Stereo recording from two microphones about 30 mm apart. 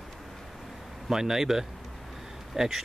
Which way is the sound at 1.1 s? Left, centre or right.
Centre.